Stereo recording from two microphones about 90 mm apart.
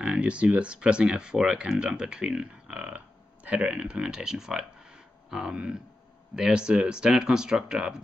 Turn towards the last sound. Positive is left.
turn(degrees=-10)  # may be behind; listen again after turning